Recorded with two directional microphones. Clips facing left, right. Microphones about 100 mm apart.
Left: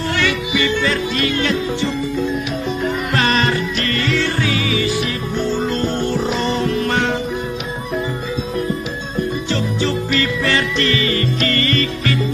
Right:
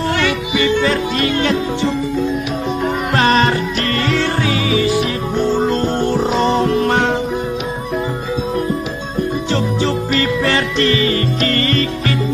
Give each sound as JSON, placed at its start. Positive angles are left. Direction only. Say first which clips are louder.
{"t": 0.1, "sound": "yodeling", "louder": "right 2 dB", "side_deg": -30}
{"t": 3.2, "sound": "music", "louder": "right 4 dB", "side_deg": -30}
{"t": 6.3, "sound": "music", "louder": "right 4 dB", "side_deg": -35}
{"t": 10.2, "sound": "music", "louder": "right 2 dB", "side_deg": -30}